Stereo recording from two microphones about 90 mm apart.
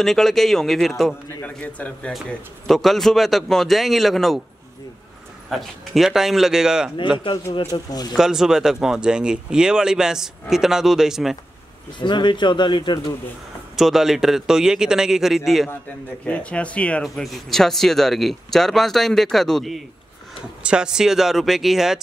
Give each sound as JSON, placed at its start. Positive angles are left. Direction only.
{"t": 0.0, "sound": "speech", "side_deg": 5}
{"t": 1.4, "sound": "speech", "side_deg": 15}
{"t": 2.6, "sound": "speech", "side_deg": 0}
{"t": 5.5, "sound": "speech", "side_deg": 0}
{"t": 7.7, "sound": "speech", "side_deg": 45}
{"t": 8.2, "sound": "speech", "side_deg": -5}
{"t": 12.0, "sound": "speech", "side_deg": 60}
{"t": 13.7, "sound": "speech", "side_deg": -5}
{"t": 16.3, "sound": "speech", "side_deg": 15}
{"t": 17.0, "sound": "speech", "side_deg": 0}
{"t": 20.6, "sound": "speech", "side_deg": -10}